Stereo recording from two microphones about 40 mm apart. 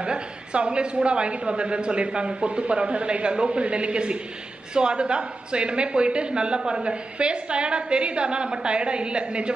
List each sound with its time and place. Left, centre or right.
0.0 s speech: right